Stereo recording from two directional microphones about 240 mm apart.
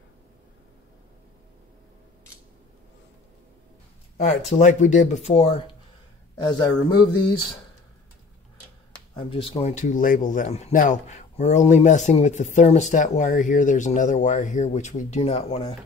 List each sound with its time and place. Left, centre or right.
4.5 s speech: left
6.6 s speech: centre
9.1 s speech: left